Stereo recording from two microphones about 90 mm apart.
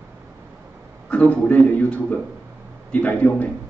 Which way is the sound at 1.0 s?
15° left (ahead or behind).